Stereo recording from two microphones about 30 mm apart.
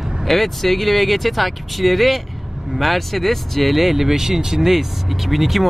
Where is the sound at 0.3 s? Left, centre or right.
Centre.